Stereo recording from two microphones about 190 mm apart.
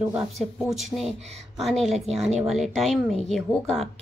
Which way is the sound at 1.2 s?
35° right (ahead or behind).